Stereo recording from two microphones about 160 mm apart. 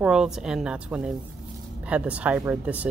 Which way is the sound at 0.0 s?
5° right (ahead or behind).